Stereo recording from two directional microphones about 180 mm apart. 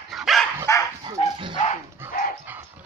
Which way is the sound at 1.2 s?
35° left (ahead or behind).